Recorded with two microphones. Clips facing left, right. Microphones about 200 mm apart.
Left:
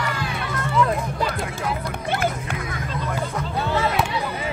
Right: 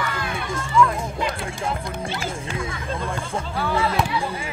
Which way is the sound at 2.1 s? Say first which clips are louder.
Left 4 dB; 55° left (ahead or behind).